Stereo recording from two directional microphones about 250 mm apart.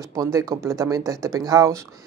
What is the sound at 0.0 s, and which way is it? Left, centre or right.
Speech, centre.